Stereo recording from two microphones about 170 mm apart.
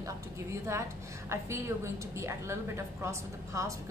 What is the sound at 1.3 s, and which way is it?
A woman's voice, 15° right (ahead or behind).